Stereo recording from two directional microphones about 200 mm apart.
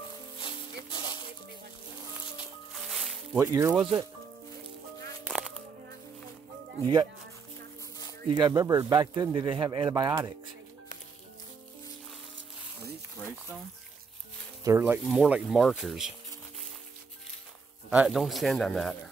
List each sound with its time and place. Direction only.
0.9 s music: 25° left (ahead or behind)
2.7 s music: centre (ahead or behind)
3.3 s speech: 15° right (ahead or behind)
6.8 s speech: 20° right (ahead or behind)
8.3 s speech: 20° right (ahead or behind)
14.6 s speech: 15° right (ahead or behind)
17.8 s speech: 5° right (ahead or behind)